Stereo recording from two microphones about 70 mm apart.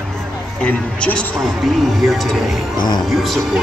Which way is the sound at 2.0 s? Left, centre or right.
Centre.